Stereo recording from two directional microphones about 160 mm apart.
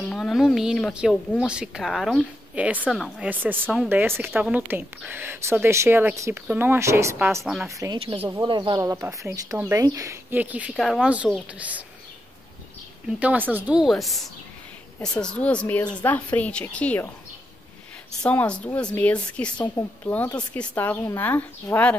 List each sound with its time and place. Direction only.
0.1 s speech: centre (ahead or behind)
3.3 s a woman's voice: 10° right (ahead or behind)
3.6 s speech: centre (ahead or behind)
3.9 s a woman's voice: 15° right (ahead or behind)
13.2 s a woman's voice: 10° right (ahead or behind); by 17.1 s 10° left (ahead or behind)
18.2 s a woman's voice: 10° left (ahead or behind)